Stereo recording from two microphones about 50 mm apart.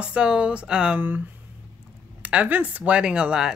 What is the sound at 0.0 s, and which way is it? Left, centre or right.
Speech, right.